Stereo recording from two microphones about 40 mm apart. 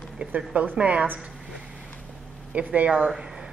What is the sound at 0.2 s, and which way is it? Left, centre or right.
Speech, right.